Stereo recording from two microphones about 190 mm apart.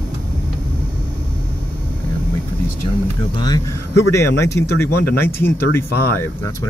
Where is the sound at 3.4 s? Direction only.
20° left (ahead or behind).